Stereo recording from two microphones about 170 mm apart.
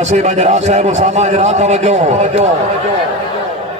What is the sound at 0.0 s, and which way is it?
A man's voice, 40° right (ahead or behind).